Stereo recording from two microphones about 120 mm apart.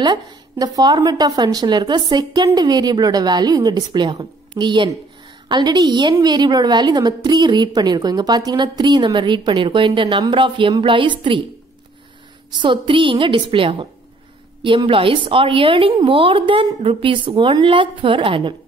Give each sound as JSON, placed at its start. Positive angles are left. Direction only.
{"t": 0.0, "sound": "a woman's voice", "side_deg": -35}
{"t": 12.6, "sound": "a woman's voice", "side_deg": -45}